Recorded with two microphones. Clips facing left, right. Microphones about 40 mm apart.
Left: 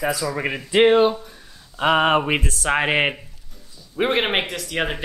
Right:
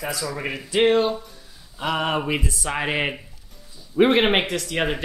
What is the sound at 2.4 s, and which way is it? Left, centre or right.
Speech, left.